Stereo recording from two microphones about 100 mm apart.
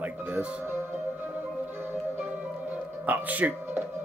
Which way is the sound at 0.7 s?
20° right (ahead or behind).